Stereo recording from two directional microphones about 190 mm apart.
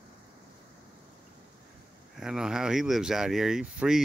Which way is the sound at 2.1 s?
5° right (ahead or behind).